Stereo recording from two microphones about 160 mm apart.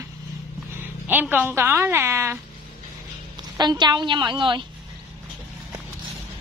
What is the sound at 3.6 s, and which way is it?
A woman's voice, 25° right (ahead or behind).